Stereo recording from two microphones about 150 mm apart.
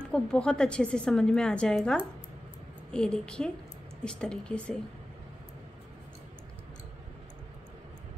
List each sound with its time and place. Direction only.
0.1 s a woman's voice: 5° left (ahead or behind)